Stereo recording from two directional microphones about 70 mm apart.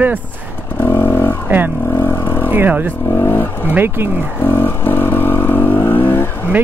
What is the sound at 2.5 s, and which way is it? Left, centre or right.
Speech, right.